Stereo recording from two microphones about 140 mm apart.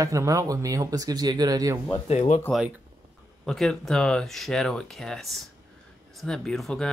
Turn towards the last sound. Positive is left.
turn(degrees=5)  # may be behind; listen again after turning